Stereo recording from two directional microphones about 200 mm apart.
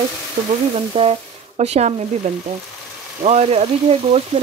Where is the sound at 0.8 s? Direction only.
30° right (ahead or behind).